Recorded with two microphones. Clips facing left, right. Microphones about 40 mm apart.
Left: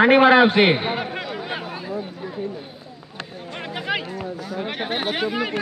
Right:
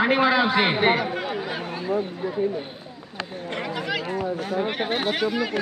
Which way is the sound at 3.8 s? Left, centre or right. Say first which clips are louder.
Left 4 dB; left.